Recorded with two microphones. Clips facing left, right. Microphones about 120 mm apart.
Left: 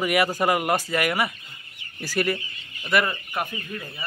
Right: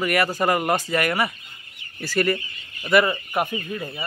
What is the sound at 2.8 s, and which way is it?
Speech, 10° right (ahead or behind).